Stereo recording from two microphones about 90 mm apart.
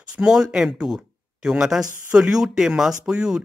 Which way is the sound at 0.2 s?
10° right (ahead or behind).